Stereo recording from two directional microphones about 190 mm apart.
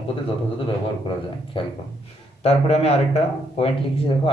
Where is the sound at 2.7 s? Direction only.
30° left (ahead or behind).